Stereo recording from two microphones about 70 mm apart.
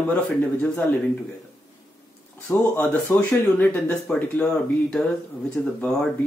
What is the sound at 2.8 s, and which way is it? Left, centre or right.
Speech, left.